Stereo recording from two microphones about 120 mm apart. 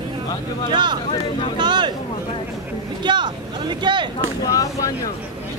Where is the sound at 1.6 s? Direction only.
40° right (ahead or behind).